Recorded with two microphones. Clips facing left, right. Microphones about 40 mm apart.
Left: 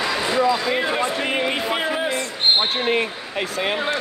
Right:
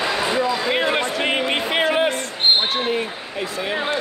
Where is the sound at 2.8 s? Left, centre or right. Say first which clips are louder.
Left 2 dB; left.